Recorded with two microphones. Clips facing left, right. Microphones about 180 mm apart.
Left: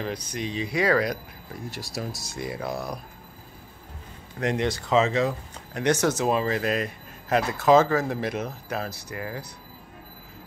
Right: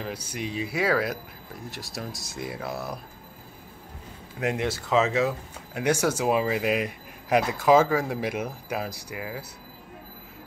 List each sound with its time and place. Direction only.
0.0 s speech: 10° right (ahead or behind)
4.4 s speech: 5° right (ahead or behind)